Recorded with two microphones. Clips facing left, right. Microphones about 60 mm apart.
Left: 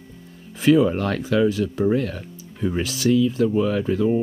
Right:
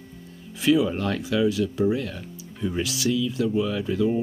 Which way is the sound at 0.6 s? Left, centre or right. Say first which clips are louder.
Left 4 dB; left.